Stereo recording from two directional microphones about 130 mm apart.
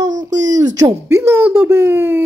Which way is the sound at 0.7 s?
20° right (ahead or behind).